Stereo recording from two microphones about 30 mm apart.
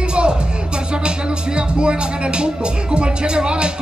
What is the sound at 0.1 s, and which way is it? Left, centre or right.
Music, right.